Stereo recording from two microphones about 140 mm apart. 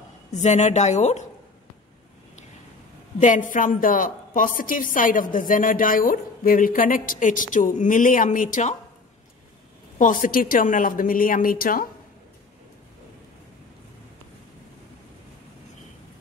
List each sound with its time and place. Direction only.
0.3 s a woman's voice: 55° left (ahead or behind)
3.2 s a woman's voice: 65° left (ahead or behind)
9.9 s a woman's voice: 70° left (ahead or behind); by 11.8 s 90° left